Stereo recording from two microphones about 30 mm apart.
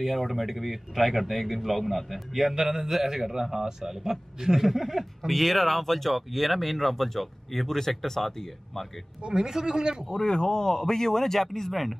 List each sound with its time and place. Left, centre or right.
0.0 s speech: centre
2.5 s a man's voice: centre
4.6 s speech: centre
9.2 s a man's voice: right
10.0 s a man's voice: centre